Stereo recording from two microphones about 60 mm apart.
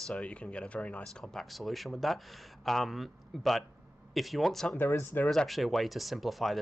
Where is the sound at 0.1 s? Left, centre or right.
Centre.